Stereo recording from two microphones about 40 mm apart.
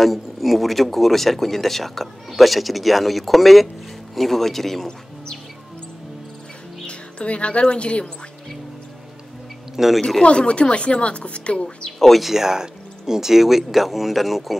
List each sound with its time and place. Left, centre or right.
0.0 s speech: centre
6.9 s speech: left
9.8 s speech: centre
10.2 s speech: left
12.0 s speech: centre